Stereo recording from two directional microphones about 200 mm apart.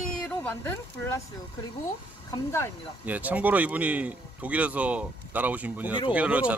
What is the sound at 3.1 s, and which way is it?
Speech, 10° right (ahead or behind).